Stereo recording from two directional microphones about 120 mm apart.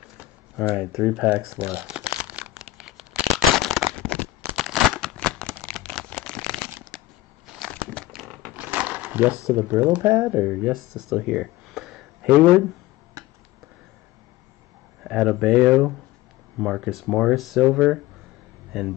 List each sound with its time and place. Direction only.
0.7 s crumpling: 5° right (ahead or behind)
4.6 s a sound: centre (ahead or behind)
7.7 s crumpling: 5° left (ahead or behind)
8.5 s a sound: 15° right (ahead or behind)
9.5 s speech: 20° right (ahead or behind)
9.8 s speech: 10° right (ahead or behind)
15.0 s speech: 5° right (ahead or behind)